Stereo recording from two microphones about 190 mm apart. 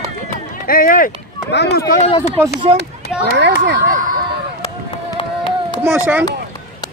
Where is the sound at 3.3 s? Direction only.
65° right (ahead or behind).